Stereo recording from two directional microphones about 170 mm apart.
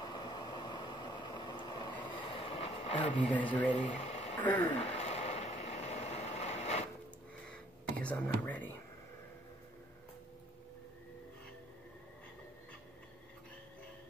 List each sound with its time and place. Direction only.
0.0 s vehicle: 25° left (ahead or behind)
3.2 s speech: 10° left (ahead or behind)
3.7 s speech: 40° left (ahead or behind)
4.4 s speech: 10° left (ahead or behind)
4.9 s vehicle: 40° left (ahead or behind)
7.5 s whispering: 5° left (ahead or behind)